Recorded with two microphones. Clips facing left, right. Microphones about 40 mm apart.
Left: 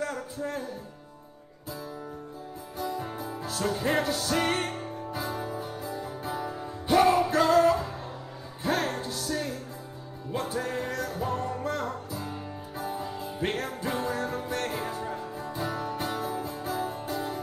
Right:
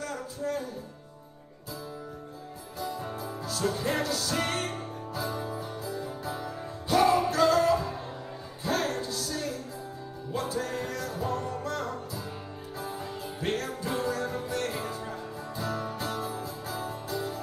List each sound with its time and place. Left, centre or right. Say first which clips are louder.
0.4 s speech: right 3 dB; left
2.8 s music: left 2 dB; centre
3.3 s music: even; left
5.9 s music: left 1 dB; centre
6.9 s music: left 2 dB; left